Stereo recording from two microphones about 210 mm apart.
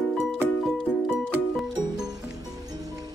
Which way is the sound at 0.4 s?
5° right (ahead or behind).